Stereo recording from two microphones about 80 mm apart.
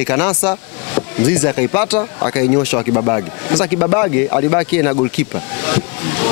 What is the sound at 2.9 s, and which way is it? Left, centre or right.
Speech, left.